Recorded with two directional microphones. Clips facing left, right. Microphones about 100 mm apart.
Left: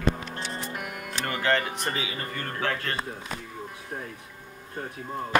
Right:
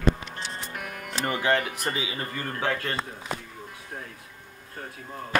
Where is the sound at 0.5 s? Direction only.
15° left (ahead or behind).